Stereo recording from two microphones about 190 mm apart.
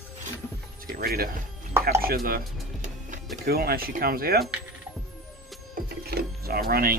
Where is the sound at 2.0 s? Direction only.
50° right (ahead or behind).